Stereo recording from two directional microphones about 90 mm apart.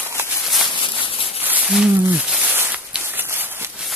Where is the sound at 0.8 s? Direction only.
70° left (ahead or behind).